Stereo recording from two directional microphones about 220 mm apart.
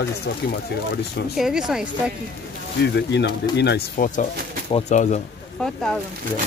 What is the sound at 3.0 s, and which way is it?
Speech, 50° left (ahead or behind).